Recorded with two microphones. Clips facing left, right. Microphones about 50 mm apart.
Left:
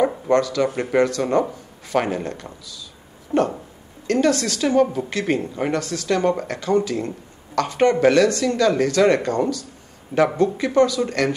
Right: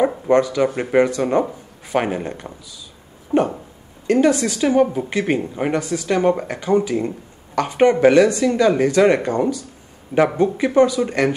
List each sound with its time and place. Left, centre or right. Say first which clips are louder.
0.0 s speech: right 2 dB; centre
3.3 s a sound: right 2 dB; centre
4.1 s speech: right 3 dB; centre